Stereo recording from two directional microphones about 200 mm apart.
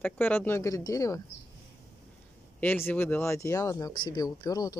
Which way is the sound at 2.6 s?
10° left (ahead or behind).